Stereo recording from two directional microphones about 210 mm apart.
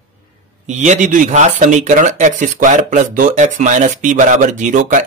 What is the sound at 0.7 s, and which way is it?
Speech, 35° right (ahead or behind).